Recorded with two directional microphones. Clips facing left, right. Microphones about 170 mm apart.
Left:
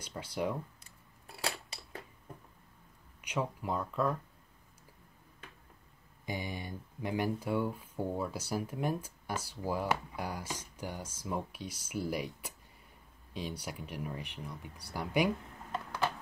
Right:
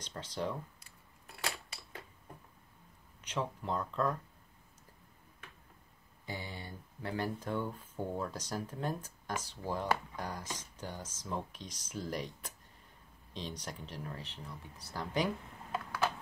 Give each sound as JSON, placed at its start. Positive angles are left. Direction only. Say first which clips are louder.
{"t": 0.0, "sound": "speech", "louder": "left 3 dB", "side_deg": 10}
{"t": 1.4, "sound": "a sound", "louder": "left 3 dB", "side_deg": 35}
{"t": 3.2, "sound": "speech", "louder": "left 2 dB", "side_deg": 10}
{"t": 6.2, "sound": "speech", "louder": "left 5 dB", "side_deg": 15}